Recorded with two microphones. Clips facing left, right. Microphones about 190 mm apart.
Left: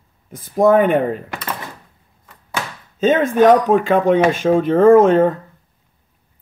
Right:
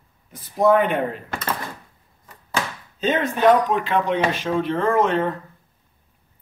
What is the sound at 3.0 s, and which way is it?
Speech, 50° left (ahead or behind).